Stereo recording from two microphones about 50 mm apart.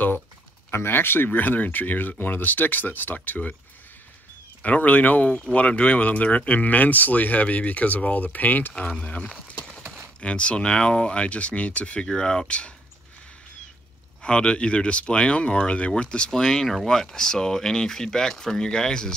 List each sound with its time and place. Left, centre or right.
0.7 s speech: left
4.6 s speech: left
10.2 s speech: left
12.1 s speech: centre
14.2 s speech: centre